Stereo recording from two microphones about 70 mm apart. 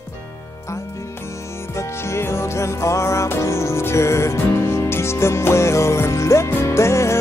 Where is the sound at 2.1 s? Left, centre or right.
Left.